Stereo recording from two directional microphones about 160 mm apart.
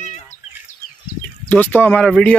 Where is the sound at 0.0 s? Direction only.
45° left (ahead or behind).